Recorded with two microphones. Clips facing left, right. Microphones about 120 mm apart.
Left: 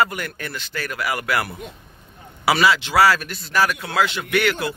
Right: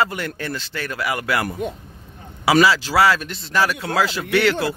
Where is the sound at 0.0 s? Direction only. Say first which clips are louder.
Even; 25° right (ahead or behind).